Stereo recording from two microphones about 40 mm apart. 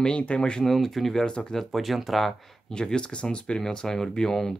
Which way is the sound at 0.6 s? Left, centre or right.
Centre.